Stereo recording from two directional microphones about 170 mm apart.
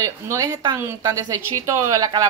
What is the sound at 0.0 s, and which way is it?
Speech, 20° right (ahead or behind).